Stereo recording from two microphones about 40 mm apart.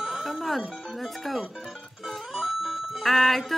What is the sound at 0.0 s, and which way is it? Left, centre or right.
Music, centre.